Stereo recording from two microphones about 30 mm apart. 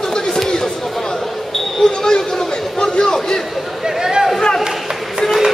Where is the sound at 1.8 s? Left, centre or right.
Centre.